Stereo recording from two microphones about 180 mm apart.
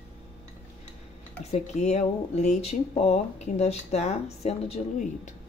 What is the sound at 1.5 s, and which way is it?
Speech, 40° left (ahead or behind).